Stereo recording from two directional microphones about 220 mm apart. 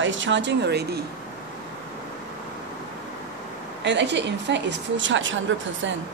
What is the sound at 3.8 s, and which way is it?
A woman's voice, 55° right (ahead or behind).